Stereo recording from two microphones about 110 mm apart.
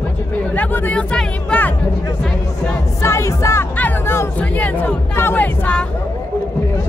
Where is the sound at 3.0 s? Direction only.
25° left (ahead or behind).